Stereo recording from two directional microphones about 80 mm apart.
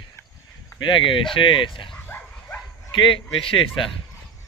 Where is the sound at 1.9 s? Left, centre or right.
Left.